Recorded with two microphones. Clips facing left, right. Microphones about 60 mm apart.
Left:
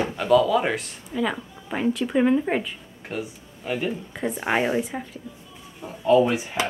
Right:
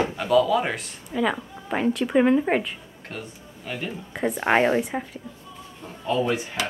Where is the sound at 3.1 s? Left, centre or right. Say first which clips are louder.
Left 5 dB; centre.